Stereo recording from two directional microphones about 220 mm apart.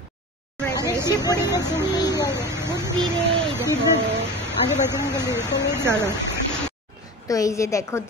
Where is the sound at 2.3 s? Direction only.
10° right (ahead or behind).